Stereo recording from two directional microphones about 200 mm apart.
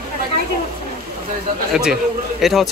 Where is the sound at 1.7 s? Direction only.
5° right (ahead or behind).